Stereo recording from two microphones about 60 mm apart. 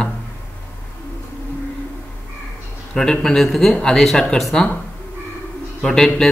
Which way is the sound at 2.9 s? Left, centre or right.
Centre.